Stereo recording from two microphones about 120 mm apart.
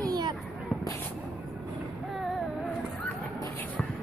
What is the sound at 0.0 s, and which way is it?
Fireworks, 35° right (ahead or behind).